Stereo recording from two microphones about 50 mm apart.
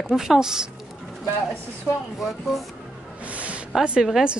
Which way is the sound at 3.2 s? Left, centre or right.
Right.